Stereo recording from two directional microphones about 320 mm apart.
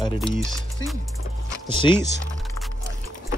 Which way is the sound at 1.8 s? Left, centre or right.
Centre.